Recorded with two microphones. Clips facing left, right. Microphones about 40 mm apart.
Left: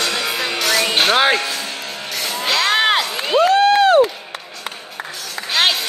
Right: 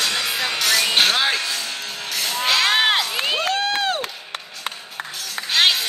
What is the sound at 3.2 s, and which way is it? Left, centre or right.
Crowd, centre.